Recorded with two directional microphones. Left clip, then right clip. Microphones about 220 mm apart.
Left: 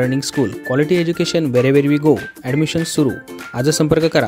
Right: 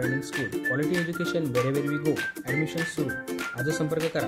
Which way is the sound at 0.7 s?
45° left (ahead or behind).